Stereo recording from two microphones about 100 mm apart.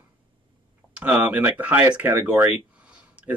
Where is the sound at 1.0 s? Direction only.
15° right (ahead or behind).